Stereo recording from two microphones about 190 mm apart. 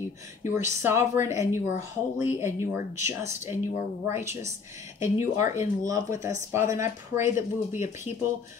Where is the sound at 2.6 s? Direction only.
15° right (ahead or behind).